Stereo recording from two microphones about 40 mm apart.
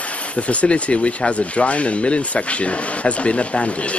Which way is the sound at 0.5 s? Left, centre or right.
Left.